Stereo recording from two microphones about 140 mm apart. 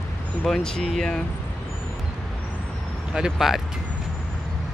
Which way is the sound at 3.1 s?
5° right (ahead or behind).